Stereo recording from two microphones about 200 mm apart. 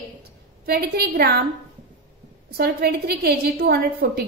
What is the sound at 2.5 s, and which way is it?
A woman's voice, 50° right (ahead or behind).